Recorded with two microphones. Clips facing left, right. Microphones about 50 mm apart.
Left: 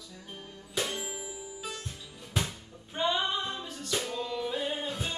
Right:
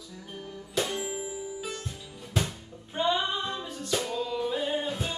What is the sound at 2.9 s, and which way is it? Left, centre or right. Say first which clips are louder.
Music: right 3 dB; centre.